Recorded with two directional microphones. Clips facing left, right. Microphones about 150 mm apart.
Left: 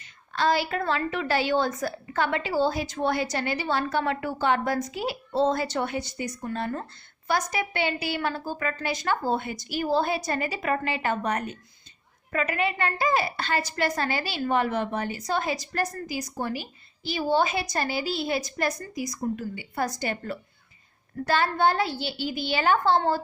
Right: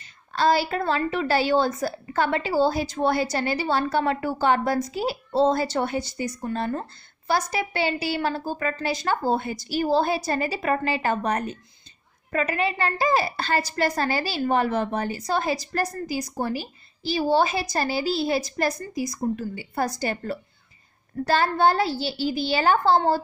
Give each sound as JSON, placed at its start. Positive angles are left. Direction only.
{"t": 0.3, "sound": "a woman's voice", "side_deg": -35}